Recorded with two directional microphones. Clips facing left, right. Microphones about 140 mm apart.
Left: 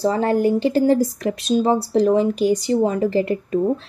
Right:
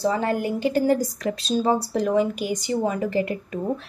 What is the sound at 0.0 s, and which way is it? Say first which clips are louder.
Speech: left 5 dB; 35° left (ahead or behind).